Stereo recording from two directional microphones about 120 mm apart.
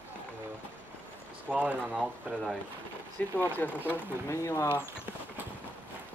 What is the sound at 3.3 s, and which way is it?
Speech, 15° left (ahead or behind).